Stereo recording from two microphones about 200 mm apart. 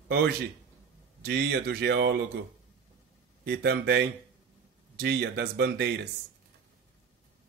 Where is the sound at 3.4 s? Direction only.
55° right (ahead or behind).